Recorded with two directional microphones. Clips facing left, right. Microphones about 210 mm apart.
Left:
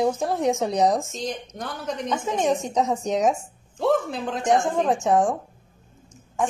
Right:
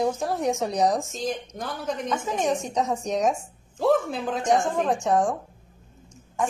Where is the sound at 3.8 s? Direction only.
Centre (ahead or behind).